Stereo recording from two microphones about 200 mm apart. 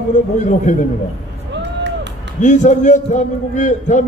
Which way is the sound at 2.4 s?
40° left (ahead or behind).